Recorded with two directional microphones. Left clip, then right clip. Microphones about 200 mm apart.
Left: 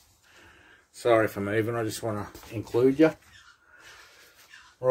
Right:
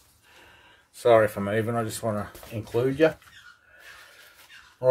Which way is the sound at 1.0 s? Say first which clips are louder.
Right 4 dB; 15° left (ahead or behind).